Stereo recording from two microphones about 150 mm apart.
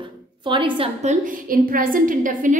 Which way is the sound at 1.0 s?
65° right (ahead or behind).